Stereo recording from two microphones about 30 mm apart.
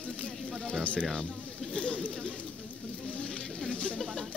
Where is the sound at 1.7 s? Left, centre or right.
Left.